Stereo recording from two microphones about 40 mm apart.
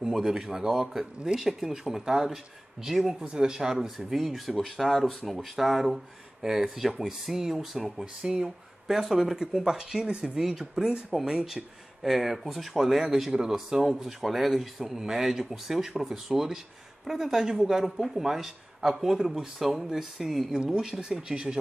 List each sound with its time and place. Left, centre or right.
0.0 s speech: centre
3.3 s speech: centre
10.9 s speech: right
12.0 s speech: centre
20.5 s speech: centre